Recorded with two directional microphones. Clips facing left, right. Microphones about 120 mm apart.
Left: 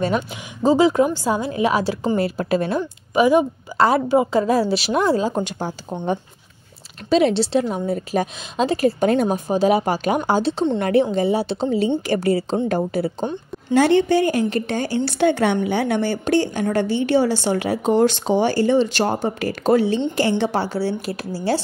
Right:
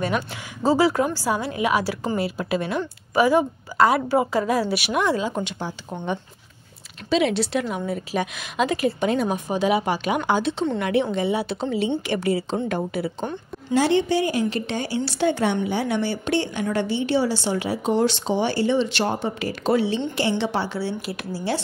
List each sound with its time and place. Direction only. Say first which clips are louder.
0.6 s a woman's voice: left 4 dB; 20° left (ahead or behind)
2.1 s a woman's voice: left 4 dB; 45° left (ahead or behind)
2.8 s a woman's voice: left 3 dB; 20° left (ahead or behind)
3.7 s a woman's voice: left 2 dB; 30° left (ahead or behind)
9.0 s a woman's voice: left 4 dB; 45° left (ahead or behind)
13.7 s a woman's voice: left 4 dB; 55° left (ahead or behind)
15.0 s a woman's voice: left 4 dB; 60° left (ahead or behind); by 21.5 s 40° left (ahead or behind)